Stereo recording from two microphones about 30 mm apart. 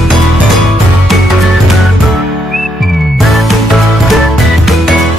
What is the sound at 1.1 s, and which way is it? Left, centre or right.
Music, centre.